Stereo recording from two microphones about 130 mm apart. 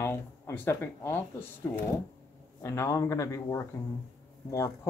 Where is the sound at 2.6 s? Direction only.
20° left (ahead or behind).